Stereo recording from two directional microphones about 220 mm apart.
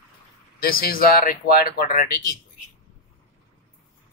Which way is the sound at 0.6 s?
40° left (ahead or behind).